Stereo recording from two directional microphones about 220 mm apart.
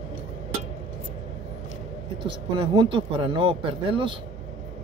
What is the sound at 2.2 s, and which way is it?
Speech, 25° right (ahead or behind).